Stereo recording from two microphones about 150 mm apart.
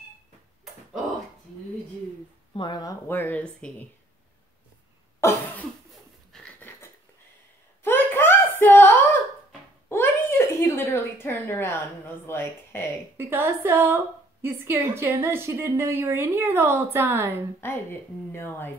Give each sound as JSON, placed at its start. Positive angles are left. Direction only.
{"t": 2.5, "sound": "speech", "side_deg": 30}
{"t": 5.2, "sound": "cough", "side_deg": 15}
{"t": 6.3, "sound": "dog", "side_deg": 5}
{"t": 7.8, "sound": "a sound", "side_deg": 15}
{"t": 12.3, "sound": "speech", "side_deg": 15}
{"t": 13.2, "sound": "a woman's voice", "side_deg": -15}
{"t": 17.6, "sound": "speech", "side_deg": 15}